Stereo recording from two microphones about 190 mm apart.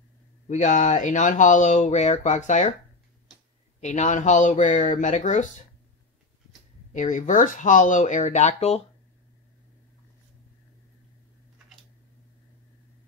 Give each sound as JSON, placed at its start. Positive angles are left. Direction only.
{"t": 0.5, "sound": "speech", "side_deg": 40}
{"t": 3.8, "sound": "speech", "side_deg": 40}
{"t": 6.9, "sound": "speech", "side_deg": 40}